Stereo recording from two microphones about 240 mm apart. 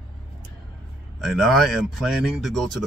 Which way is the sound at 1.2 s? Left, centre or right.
Centre.